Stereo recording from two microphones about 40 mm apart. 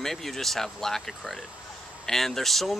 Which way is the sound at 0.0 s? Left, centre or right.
Centre.